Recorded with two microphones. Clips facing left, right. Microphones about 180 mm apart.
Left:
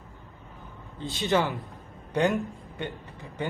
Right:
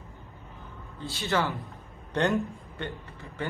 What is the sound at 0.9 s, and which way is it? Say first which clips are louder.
Speech: left 3 dB; 20° left (ahead or behind).